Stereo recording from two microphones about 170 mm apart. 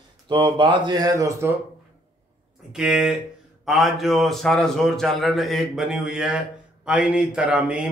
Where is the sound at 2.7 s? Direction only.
5° right (ahead or behind).